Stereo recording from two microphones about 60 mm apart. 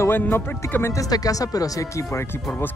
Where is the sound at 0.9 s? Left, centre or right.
Left.